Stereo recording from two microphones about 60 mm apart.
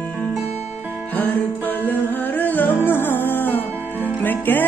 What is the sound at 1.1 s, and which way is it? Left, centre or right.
Music, left.